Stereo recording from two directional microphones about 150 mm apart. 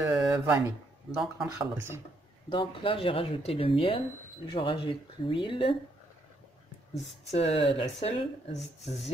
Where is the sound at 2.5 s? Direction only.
35° left (ahead or behind).